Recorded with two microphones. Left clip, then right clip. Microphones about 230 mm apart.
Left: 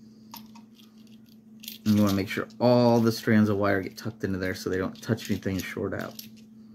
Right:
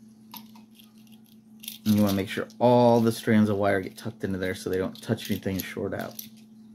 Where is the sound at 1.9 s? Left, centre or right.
Centre.